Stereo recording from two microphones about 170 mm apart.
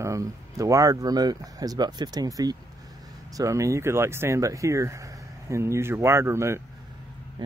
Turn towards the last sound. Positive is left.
turn(degrees=-15)  # may be behind; listen again after turning